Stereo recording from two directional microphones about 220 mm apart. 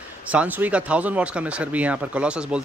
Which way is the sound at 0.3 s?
5° right (ahead or behind).